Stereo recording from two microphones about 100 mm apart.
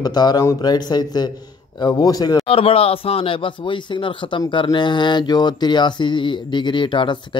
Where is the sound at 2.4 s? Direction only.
70° left (ahead or behind).